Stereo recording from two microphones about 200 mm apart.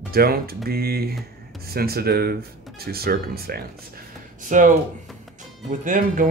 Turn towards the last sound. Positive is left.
turn(degrees=-40)  # may be behind; listen again after turning